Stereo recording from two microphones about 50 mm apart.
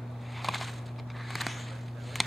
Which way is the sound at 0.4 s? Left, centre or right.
Centre.